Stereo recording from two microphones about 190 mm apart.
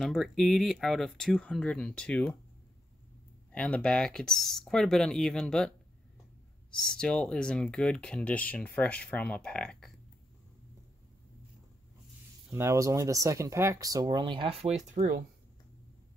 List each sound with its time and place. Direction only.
0.0 s speech: centre (ahead or behind)
3.5 s speech: 5° left (ahead or behind)
6.7 s speech: 5° left (ahead or behind)
12.4 s speech: 15° right (ahead or behind); by 14.8 s 30° right (ahead or behind)
15.0 s speech: 45° right (ahead or behind)